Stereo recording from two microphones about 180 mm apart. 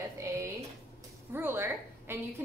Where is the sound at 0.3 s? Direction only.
15° right (ahead or behind).